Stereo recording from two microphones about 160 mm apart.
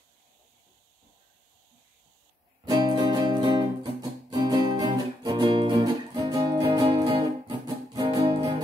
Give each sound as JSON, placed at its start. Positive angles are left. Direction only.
{"t": 2.6, "sound": "music", "side_deg": -25}